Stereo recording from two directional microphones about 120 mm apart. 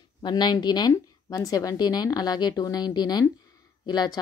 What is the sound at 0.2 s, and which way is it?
A woman's voice, 35° left (ahead or behind).